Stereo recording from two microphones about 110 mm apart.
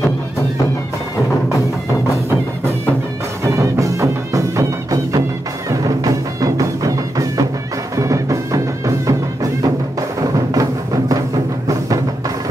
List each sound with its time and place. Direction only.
3.4 s music: 30° right (ahead or behind)